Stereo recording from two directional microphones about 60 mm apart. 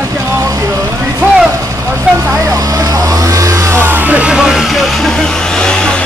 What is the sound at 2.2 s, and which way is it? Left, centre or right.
Speech, right.